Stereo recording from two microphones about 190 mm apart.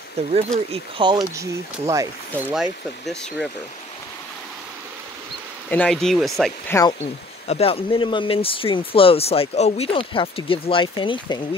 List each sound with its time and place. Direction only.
0.2 s speech: 35° right (ahead or behind)
1.3 s speech: 15° right (ahead or behind)
2.5 s speech: centre (ahead or behind)
5.7 s speech: 5° left (ahead or behind)
6.7 s speech: 20° left (ahead or behind)
7.4 s speech: 30° left (ahead or behind)